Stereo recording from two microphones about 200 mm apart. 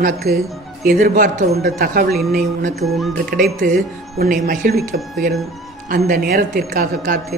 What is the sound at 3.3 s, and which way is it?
A woman's voice, 50° right (ahead or behind).